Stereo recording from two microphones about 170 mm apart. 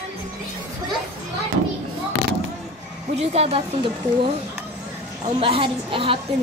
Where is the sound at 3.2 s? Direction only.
35° right (ahead or behind).